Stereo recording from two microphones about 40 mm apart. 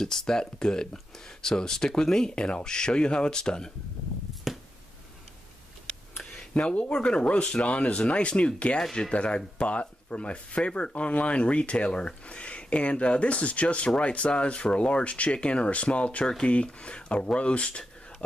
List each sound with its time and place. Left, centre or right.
0.0 s speech: centre
4.5 s finger snapping: centre
6.5 s speech: left